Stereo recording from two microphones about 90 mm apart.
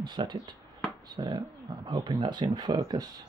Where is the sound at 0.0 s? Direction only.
60° right (ahead or behind).